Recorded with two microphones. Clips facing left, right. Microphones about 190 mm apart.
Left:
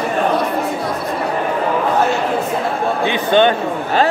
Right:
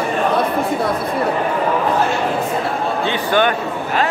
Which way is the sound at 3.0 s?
20° left (ahead or behind).